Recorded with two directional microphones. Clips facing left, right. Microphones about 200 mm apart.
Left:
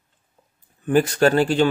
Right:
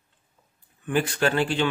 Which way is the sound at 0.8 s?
40° left (ahead or behind).